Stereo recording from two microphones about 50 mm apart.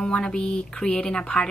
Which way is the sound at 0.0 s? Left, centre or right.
Centre.